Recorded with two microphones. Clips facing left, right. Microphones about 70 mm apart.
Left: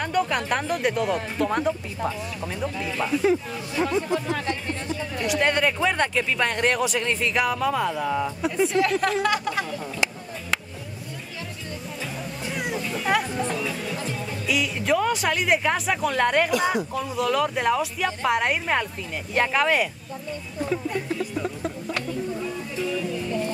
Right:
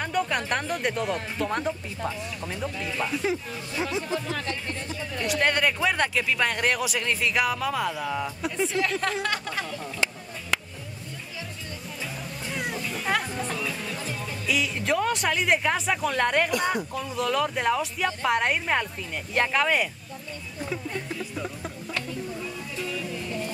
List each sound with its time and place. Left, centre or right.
0.0 s speech: centre
4.5 s speech: centre
5.2 s speech: centre
12.5 s a sound: centre
13.3 s speech: centre
21.4 s music: centre